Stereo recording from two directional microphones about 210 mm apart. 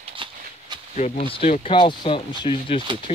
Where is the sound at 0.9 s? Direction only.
30° left (ahead or behind).